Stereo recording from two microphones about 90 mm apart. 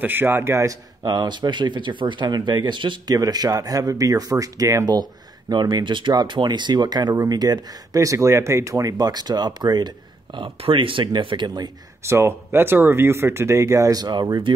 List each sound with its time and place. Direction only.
0.0 s speech: 25° right (ahead or behind)
1.0 s speech: 50° right (ahead or behind)
3.1 s speech: 45° right (ahead or behind)
5.5 s speech: 55° right (ahead or behind)
12.0 s speech: 30° right (ahead or behind); by 14.2 s 50° right (ahead or behind)